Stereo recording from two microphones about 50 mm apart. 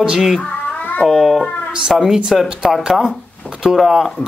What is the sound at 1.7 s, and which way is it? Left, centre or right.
Mantra, centre.